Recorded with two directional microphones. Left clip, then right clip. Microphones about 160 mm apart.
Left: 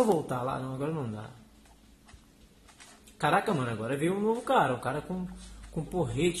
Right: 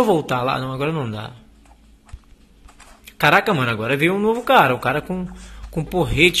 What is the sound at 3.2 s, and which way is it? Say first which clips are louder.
Speech: right 12 dB; 15° right (ahead or behind).